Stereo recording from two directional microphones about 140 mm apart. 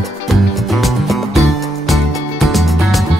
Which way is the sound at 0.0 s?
Centre (ahead or behind).